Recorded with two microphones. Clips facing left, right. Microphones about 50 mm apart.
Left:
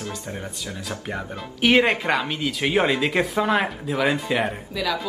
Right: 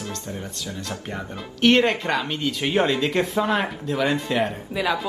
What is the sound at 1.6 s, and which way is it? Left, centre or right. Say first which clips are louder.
Speech: even; centre.